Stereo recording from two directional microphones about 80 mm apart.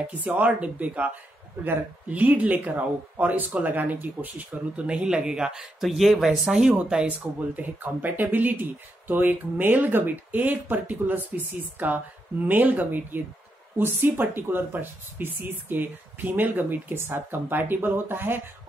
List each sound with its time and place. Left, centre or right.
0.2 s speech: centre
7.1 s speech: centre